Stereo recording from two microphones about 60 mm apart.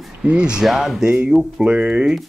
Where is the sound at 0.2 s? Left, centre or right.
Centre.